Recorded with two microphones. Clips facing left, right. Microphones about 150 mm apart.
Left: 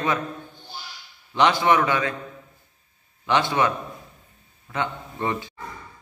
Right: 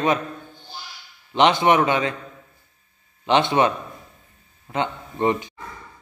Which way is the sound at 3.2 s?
20° right (ahead or behind).